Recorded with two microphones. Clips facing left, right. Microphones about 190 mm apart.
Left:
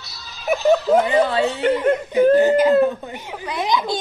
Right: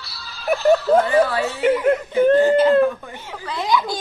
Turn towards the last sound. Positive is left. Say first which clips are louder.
# even
turn(degrees=20)  # may be behind; listen again after turning